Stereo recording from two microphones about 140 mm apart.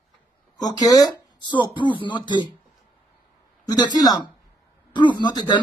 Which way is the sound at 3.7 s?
30° left (ahead or behind).